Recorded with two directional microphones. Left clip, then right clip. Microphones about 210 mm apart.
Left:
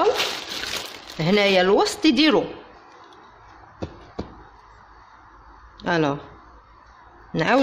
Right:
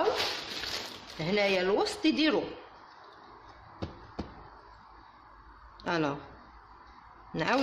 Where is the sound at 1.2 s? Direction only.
35° left (ahead or behind).